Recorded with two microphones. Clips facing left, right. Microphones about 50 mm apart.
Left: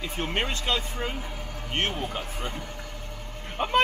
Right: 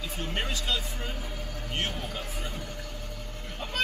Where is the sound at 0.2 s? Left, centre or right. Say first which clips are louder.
Left 4 dB; left.